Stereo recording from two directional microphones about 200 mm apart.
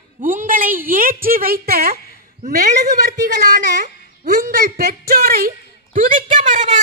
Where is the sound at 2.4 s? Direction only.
35° right (ahead or behind).